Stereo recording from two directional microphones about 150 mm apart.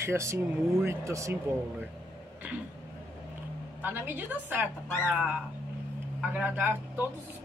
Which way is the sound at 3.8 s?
15° right (ahead or behind).